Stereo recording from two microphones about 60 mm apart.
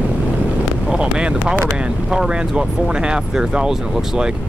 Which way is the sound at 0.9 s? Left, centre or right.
Centre.